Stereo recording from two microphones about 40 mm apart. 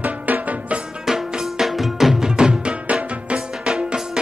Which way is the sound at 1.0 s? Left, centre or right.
Centre.